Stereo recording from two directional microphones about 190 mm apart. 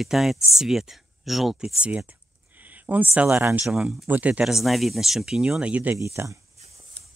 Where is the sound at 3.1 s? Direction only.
10° right (ahead or behind).